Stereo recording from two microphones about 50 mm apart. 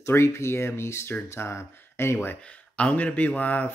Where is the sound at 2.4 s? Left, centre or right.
Left.